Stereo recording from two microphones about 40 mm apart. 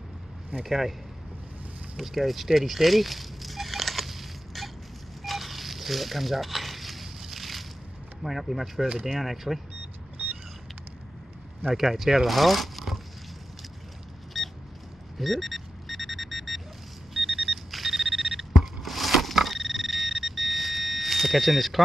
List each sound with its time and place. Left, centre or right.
0.7 s speech: centre
2.0 s a sound: centre
5.2 s telephone dialing: centre
8.2 s speech: centre
11.7 s speech: centre
12.3 s zipper: centre
14.3 s vehicle: centre
15.1 s a sound: centre